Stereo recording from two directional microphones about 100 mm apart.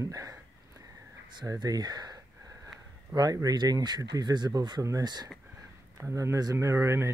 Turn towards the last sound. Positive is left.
turn(degrees=-25)  # may be behind; listen again after turning